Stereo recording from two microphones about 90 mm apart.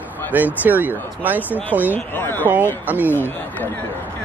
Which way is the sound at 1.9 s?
20° left (ahead or behind).